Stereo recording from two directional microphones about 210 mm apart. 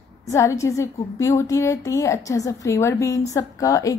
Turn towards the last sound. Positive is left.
turn(degrees=15)  # may be behind; listen again after turning